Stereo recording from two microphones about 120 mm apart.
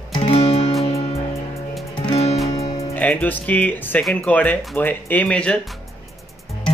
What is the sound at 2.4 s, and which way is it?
Music, 35° left (ahead or behind).